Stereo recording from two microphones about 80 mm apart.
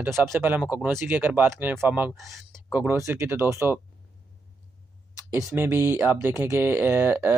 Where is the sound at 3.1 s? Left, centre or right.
Right.